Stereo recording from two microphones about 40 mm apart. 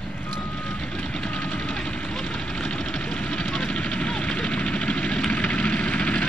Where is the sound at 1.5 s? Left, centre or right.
Left.